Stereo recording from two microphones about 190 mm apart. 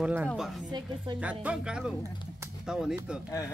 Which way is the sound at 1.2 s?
5° right (ahead or behind).